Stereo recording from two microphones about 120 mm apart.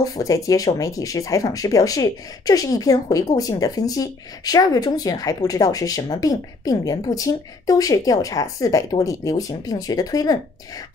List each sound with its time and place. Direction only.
0.0 s speech: 30° left (ahead or behind)